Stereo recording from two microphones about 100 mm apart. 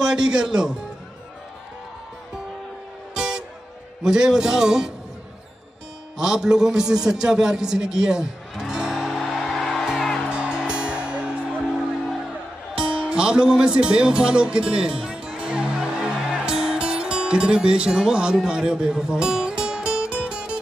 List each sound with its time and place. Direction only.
0.0 s a man's voice: 5° right (ahead or behind)
3.2 s music: 5° right (ahead or behind)
4.0 s a man's voice: 5° right (ahead or behind)
6.1 s a sound: 5° right (ahead or behind)
10.3 s music: 10° right (ahead or behind)